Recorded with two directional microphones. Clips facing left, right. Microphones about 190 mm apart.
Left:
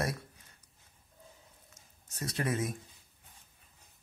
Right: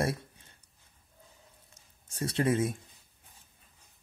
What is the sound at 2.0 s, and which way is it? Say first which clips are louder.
Speech: right 6 dB; 30° right (ahead or behind).